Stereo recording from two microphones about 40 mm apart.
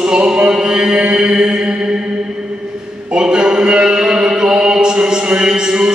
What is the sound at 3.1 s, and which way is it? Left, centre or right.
Chant, right.